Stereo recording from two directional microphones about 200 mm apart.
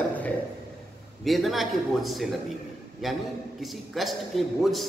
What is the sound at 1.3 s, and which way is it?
A man's voice, centre (ahead or behind).